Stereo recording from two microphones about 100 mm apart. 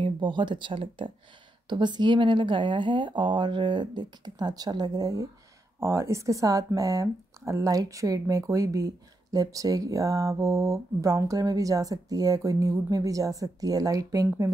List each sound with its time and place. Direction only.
0.0 s speech: 55° right (ahead or behind); by 5.3 s 35° right (ahead or behind)
5.8 s speech: 25° right (ahead or behind)